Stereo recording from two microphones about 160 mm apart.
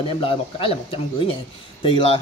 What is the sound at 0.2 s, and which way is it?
Speech, 35° left (ahead or behind).